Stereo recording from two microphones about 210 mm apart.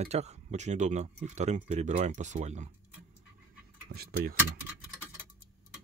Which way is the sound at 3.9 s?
45° right (ahead or behind).